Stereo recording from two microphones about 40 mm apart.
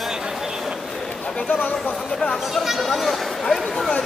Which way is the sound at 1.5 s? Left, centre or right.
Left.